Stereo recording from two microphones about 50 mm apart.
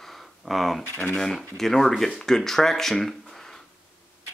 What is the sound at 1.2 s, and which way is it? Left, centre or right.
Speech, centre.